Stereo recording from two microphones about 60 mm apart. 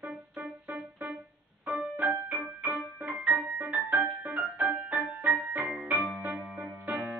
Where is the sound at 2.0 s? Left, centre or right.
Right.